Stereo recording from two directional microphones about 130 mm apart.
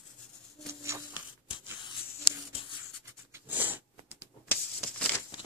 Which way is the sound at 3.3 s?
15° right (ahead or behind).